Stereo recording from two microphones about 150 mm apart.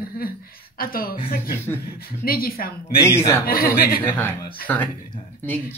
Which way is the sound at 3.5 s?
85° left.